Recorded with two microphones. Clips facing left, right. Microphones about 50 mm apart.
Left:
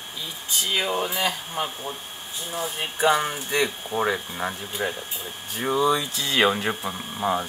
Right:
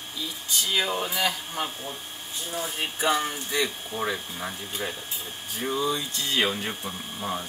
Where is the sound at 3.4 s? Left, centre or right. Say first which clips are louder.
Left 3 dB; left.